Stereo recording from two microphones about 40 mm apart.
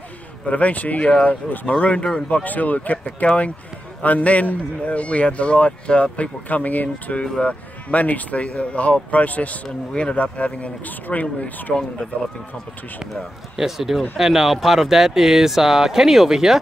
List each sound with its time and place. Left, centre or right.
0.5 s speech: left
2.2 s speech: left
6.5 s speech: left
7.1 s speech: left
7.4 s speech: left
13.1 s speech: centre